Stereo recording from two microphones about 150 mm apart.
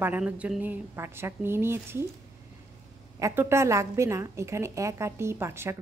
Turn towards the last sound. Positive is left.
turn(degrees=-15)  # may be behind; listen again after turning